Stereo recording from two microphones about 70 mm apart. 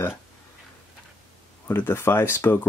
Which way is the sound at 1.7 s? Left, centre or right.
Left.